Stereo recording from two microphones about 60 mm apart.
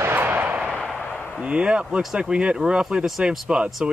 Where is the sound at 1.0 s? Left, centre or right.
Left.